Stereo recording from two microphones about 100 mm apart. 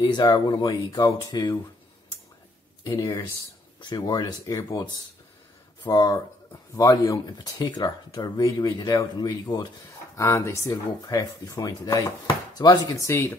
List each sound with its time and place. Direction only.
0.0 s speech: 45° left (ahead or behind)
2.8 s speech: 35° left (ahead or behind)
5.9 s speech: 40° left (ahead or behind)